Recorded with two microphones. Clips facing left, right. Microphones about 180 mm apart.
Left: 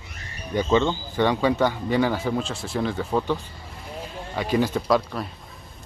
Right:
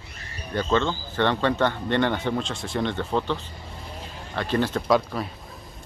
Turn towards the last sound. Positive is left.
turn(degrees=0)  # may be behind; listen again after turning